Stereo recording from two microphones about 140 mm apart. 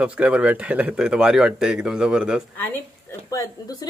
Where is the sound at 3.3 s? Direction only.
25° left (ahead or behind).